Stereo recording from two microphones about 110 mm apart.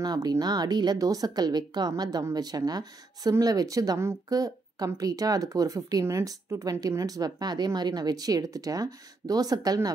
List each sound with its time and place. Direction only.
0.0 s speech: 35° right (ahead or behind)